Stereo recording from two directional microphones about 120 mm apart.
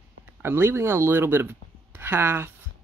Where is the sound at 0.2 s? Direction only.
20° right (ahead or behind).